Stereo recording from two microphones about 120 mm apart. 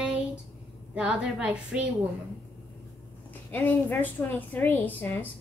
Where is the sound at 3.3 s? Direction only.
15° left (ahead or behind).